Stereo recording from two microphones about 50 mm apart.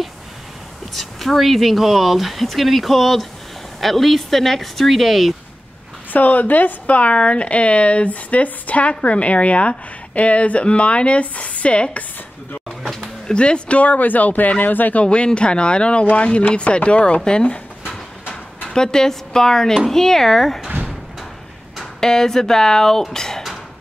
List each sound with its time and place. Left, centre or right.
0.9 s speech: centre
6.1 s a woman's voice: left
13.3 s speech: centre; by 15.0 s left
15.0 s a woman's voice: left
18.7 s speech: centre
22.0 s speech: centre
23.1 s a sound: centre